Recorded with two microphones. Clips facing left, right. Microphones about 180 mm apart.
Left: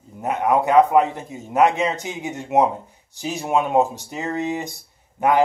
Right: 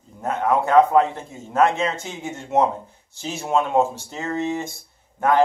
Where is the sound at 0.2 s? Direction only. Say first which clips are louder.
Left 1 dB; 15° left (ahead or behind).